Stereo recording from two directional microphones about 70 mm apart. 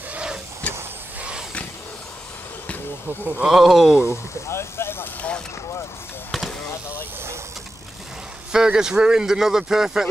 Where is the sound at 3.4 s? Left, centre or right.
Centre.